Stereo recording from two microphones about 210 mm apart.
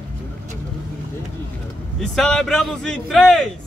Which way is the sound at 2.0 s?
5° left (ahead or behind).